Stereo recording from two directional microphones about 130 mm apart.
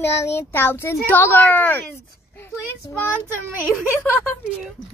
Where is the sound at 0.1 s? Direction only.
20° left (ahead or behind).